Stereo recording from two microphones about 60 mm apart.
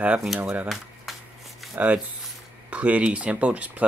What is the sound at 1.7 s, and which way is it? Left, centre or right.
Speech, right.